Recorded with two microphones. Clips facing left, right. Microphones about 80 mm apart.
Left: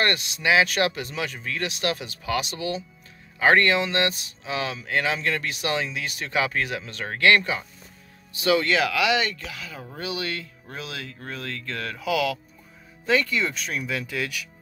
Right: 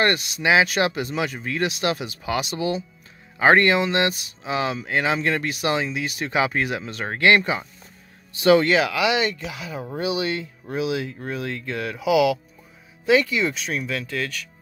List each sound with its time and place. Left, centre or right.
0.0 s speech: centre
8.6 s speech: centre